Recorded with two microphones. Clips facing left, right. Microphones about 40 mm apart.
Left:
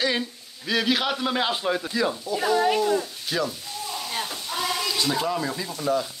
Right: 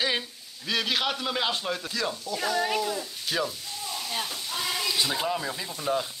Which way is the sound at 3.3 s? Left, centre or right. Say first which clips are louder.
Left 2 dB; centre.